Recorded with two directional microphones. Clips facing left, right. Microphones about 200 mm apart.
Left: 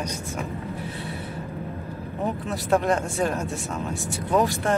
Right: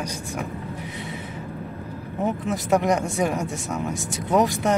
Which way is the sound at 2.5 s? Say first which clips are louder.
Right 1 dB; 15° right (ahead or behind).